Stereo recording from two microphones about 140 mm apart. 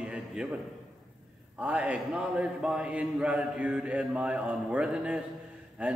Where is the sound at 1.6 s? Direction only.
10° right (ahead or behind).